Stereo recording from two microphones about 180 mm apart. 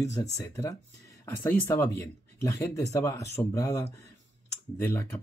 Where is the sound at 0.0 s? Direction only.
20° left (ahead or behind).